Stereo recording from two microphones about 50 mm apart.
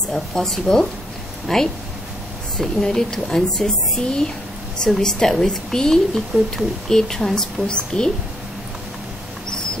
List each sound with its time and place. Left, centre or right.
0.1 s a woman's voice: centre
7.6 s a woman's voice: centre